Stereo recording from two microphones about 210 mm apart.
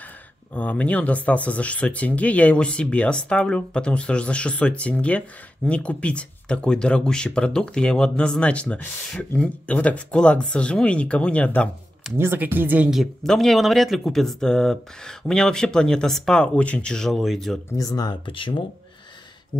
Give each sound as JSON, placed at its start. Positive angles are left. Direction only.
{"t": 0.6, "sound": "speech", "side_deg": 5}
{"t": 12.2, "sound": "speech", "side_deg": -10}
{"t": 17.7, "sound": "speech", "side_deg": 15}